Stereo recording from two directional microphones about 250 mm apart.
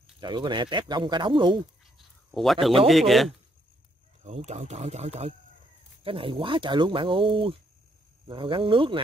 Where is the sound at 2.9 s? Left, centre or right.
Centre.